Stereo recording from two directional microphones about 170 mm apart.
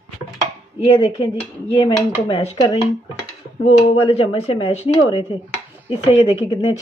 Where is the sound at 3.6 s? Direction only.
40° left (ahead or behind).